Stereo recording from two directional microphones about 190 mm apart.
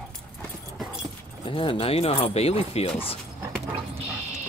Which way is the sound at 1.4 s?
30° left (ahead or behind).